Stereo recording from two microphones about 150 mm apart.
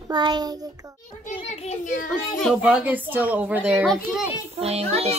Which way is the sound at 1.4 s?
45° left (ahead or behind).